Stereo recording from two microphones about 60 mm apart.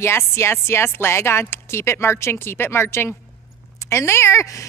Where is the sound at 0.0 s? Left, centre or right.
Left.